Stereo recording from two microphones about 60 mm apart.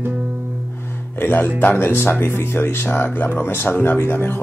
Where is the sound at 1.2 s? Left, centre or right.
Left.